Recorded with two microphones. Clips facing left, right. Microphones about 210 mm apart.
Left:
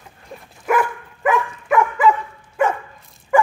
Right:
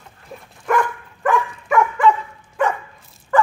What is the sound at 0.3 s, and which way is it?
Dog, 5° right (ahead or behind).